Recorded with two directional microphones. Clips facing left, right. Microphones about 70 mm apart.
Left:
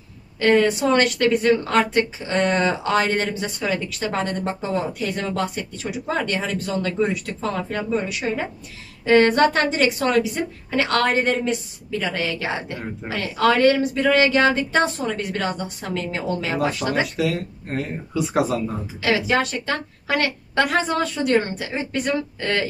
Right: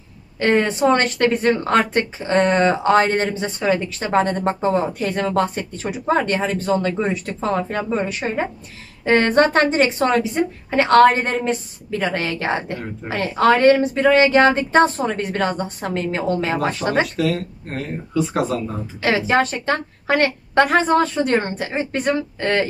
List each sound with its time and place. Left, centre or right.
0.4 s speech: right
17.0 s speech: centre
18.9 s speech: right